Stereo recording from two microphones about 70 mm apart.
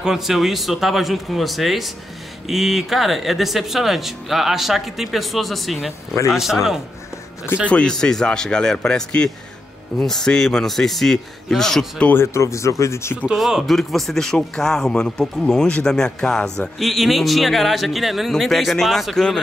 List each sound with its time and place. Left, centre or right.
0.0 s speech: centre
7.7 s speech: centre
12.0 s speech: centre
12.4 s speech: left
13.4 s speech: centre